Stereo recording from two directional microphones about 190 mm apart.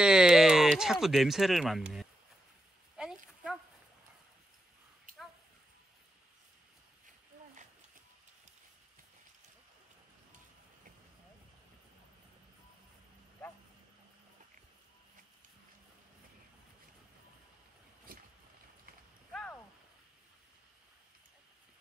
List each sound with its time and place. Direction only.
0.0 s speech: 5° right (ahead or behind)
3.0 s a sound: 5° right (ahead or behind)
5.1 s dog: 45° right (ahead or behind)
18.1 s boat: 50° right (ahead or behind)